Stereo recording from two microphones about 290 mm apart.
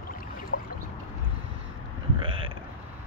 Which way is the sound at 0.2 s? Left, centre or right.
Left.